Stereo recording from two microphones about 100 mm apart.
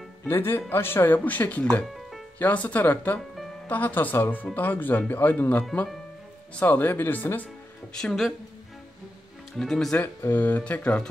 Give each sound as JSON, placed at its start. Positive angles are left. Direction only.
{"t": 0.3, "sound": "speech", "side_deg": 20}
{"t": 2.0, "sound": "music", "side_deg": 0}
{"t": 2.3, "sound": "speech", "side_deg": 15}
{"t": 7.9, "sound": "speech", "side_deg": 5}
{"t": 9.6, "sound": "speech", "side_deg": 5}
{"t": 9.9, "sound": "speech", "side_deg": 20}